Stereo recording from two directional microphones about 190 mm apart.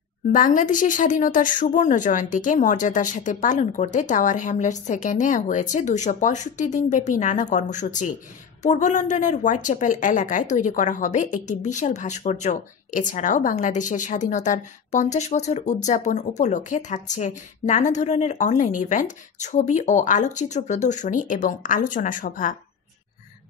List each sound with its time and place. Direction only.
0.3 s a woman's voice: 45° left (ahead or behind)